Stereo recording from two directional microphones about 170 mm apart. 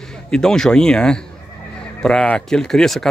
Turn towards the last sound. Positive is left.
turn(degrees=0)  # may be behind; listen again after turning